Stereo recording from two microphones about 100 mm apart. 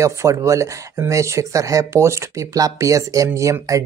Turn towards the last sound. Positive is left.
turn(degrees=-35)  # may be behind; listen again after turning